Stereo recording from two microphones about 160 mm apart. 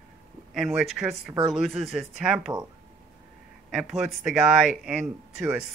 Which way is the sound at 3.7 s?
5° right (ahead or behind).